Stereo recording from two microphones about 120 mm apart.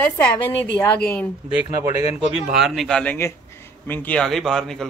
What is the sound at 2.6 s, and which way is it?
Speech, centre (ahead or behind).